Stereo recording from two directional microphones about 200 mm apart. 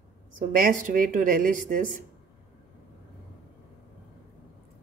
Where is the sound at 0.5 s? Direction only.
45° right (ahead or behind).